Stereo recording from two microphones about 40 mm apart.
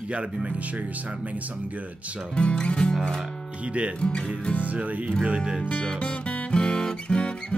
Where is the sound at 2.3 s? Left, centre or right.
Left.